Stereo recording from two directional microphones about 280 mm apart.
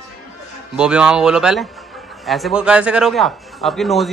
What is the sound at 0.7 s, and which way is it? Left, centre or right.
A man's voice, centre.